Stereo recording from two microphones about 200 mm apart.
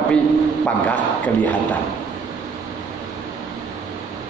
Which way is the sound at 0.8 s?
5° left (ahead or behind).